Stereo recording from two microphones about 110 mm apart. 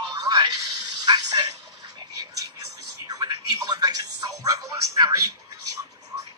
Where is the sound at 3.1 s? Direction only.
35° right (ahead or behind).